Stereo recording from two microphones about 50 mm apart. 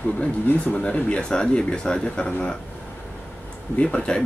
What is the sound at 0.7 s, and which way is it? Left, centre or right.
Speech, left.